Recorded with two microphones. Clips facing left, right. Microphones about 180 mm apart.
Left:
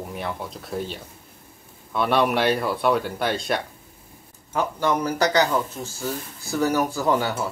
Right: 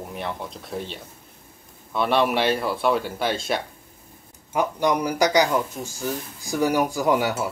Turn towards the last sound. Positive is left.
turn(degrees=-10)  # may be behind; listen again after turning